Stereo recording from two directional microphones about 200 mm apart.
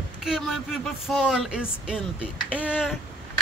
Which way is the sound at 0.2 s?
Centre (ahead or behind).